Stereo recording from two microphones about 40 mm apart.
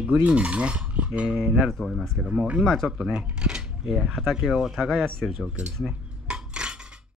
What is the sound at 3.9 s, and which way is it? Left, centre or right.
Speech, centre.